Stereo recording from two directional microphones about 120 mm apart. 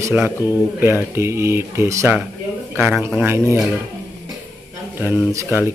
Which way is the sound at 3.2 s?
20° right (ahead or behind).